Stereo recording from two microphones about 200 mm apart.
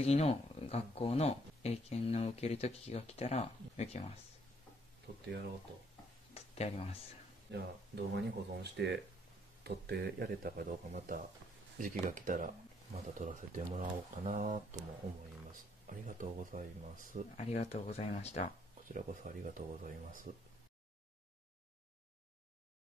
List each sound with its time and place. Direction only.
0.0 s speech: 30° left (ahead or behind)
6.3 s a sound: 30° left (ahead or behind)
7.5 s speech: 55° right (ahead or behind); by 17.2 s 40° right (ahead or behind)
17.4 s speech: 35° left (ahead or behind)
18.9 s speech: 40° right (ahead or behind)